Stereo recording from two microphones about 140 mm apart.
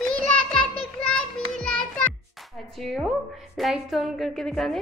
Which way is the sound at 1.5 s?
5° left (ahead or behind).